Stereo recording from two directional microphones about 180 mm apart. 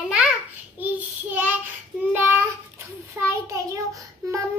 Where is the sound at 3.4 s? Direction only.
20° right (ahead or behind).